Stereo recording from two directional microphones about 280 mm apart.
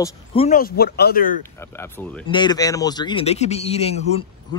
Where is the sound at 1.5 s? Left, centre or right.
Centre.